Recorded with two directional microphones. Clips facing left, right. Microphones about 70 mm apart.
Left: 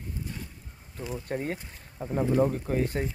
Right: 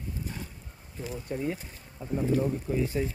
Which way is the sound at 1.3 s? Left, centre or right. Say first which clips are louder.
Right 1 dB; left.